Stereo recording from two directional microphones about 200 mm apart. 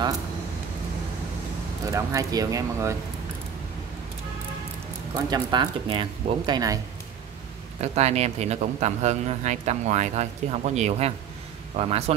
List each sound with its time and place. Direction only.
1.9 s speech: 15° right (ahead or behind)
5.3 s speech: 20° right (ahead or behind)
7.8 s a man's voice: 35° right (ahead or behind)